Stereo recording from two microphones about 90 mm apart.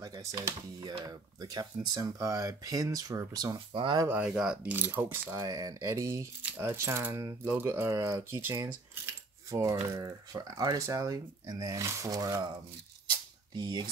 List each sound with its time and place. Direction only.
0.0 s speech: 40° right (ahead or behind)
1.0 s speech: 50° right (ahead or behind)
3.5 s speech: 70° right (ahead or behind)
4.2 s speech: 10° right (ahead or behind)
4.7 s speech: 20° right (ahead or behind)
5.3 s speech: 40° right (ahead or behind)
7.4 s speech: 20° right (ahead or behind)
8.0 s speech: 35° right (ahead or behind)
13.1 s a sound: 50° right (ahead or behind)